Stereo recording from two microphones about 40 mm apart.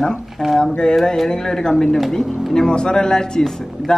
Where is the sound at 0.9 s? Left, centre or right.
Centre.